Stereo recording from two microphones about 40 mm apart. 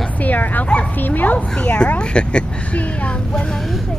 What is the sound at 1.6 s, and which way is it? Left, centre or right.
Speech, left.